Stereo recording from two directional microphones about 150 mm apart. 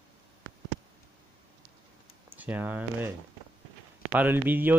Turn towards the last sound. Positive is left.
turn(degrees=-15)  # may be behind; listen again after turning